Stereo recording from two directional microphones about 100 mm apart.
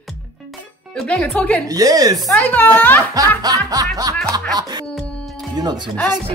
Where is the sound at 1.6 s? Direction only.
35° right (ahead or behind).